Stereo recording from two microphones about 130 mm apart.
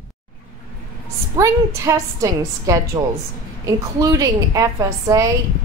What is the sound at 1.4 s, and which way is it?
A woman's voice, 25° right (ahead or behind).